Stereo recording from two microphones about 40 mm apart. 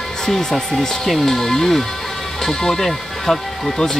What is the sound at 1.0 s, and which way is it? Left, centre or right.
Speech, centre.